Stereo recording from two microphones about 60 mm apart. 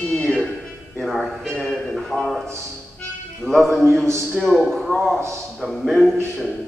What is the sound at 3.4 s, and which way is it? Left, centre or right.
A man's voice, centre.